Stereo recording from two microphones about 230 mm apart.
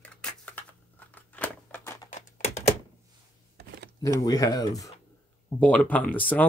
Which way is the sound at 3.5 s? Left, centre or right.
Right.